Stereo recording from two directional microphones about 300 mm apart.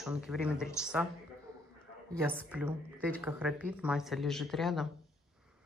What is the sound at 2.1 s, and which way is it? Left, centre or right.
A woman's voice, centre.